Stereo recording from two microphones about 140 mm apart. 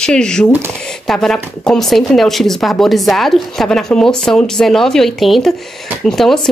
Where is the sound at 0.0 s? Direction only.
5° left (ahead or behind).